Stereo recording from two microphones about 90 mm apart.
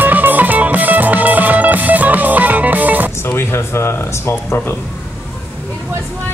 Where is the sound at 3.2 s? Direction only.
25° left (ahead or behind).